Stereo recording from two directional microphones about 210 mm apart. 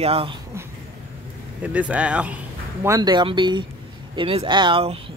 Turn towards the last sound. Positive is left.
turn(degrees=-25)  # may be behind; listen again after turning